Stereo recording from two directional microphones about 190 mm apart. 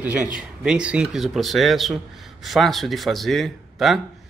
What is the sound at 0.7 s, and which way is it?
Speech, 5° right (ahead or behind).